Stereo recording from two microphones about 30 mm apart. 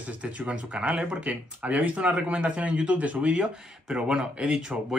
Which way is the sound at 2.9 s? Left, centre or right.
Right.